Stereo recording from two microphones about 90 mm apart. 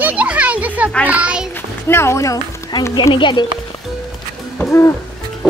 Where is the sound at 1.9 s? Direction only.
30° left (ahead or behind).